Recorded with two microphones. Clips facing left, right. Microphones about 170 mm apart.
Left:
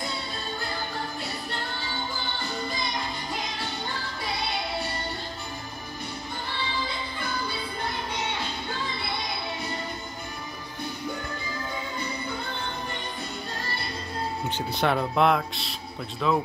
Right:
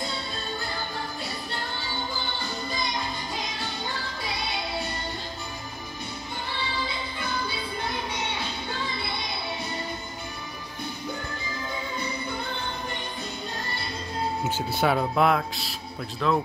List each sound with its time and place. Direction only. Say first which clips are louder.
14.4 s speech: right 1 dB; 5° right (ahead or behind)